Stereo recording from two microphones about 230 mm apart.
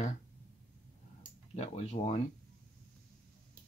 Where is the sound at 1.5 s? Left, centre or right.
Left.